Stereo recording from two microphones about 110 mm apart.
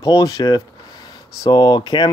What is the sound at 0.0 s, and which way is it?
Speech, 35° left (ahead or behind).